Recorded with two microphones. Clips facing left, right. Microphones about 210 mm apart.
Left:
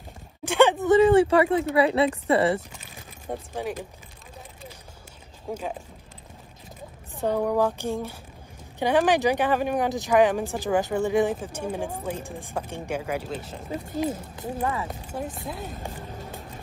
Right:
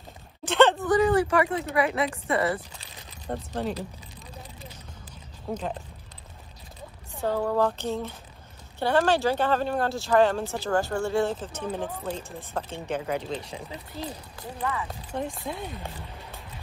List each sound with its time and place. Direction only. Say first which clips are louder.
0.5 s a sound: left 1 dB; 10° left (ahead or behind)
0.8 s speech: left 5 dB; 25° left (ahead or behind)
3.3 s speech: right 1 dB; 10° left (ahead or behind)
5.5 s speech: even; 10° left (ahead or behind)
7.2 s speech: left 2 dB; 15° left (ahead or behind)
14.6 s speech: left 2 dB; 25° left (ahead or behind)
15.4 s speech: right 1 dB; 5° left (ahead or behind)
15.7 s speech: left 3 dB; 45° left (ahead or behind)